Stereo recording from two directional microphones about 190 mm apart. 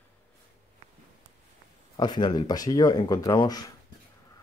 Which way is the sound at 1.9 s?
20° left (ahead or behind).